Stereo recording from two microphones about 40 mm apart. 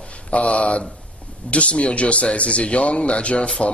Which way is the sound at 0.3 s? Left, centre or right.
Left.